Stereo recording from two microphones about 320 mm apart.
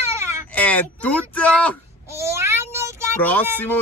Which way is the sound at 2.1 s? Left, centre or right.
Centre.